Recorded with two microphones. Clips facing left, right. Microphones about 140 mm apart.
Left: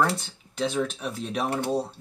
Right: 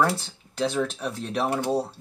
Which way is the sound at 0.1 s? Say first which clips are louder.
Right 1 dB; 30° right (ahead or behind).